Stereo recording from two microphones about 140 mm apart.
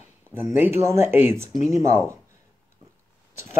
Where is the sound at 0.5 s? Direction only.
15° right (ahead or behind).